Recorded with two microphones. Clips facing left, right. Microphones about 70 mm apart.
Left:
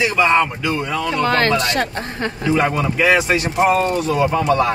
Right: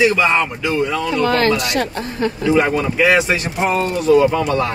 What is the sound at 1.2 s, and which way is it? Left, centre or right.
Speech, left.